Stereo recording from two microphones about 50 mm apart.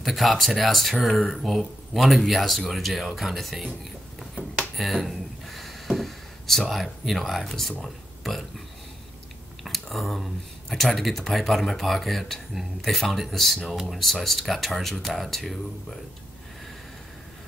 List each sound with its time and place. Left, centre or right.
0.0 s speech: centre
4.7 s a sound: centre
7.8 s speech: centre